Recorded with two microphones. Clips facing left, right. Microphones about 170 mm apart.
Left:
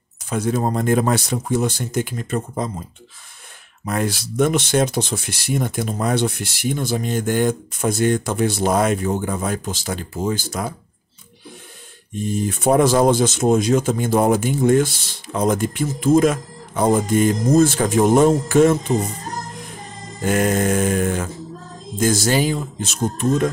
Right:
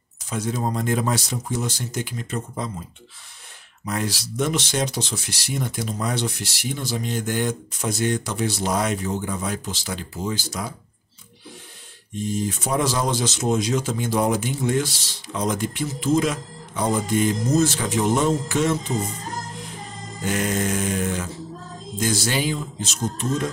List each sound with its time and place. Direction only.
0.3 s speech: 55° left (ahead or behind)
3.8 s speech: 55° left (ahead or behind)
12.2 s speech: 55° left (ahead or behind)